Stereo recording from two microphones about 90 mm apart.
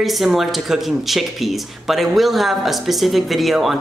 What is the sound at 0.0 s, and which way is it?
Speech, centre (ahead or behind).